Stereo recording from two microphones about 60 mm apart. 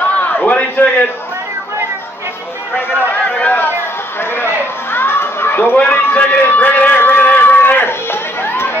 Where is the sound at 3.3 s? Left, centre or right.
Left.